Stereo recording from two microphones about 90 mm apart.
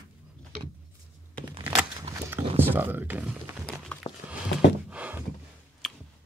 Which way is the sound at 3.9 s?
15° left (ahead or behind).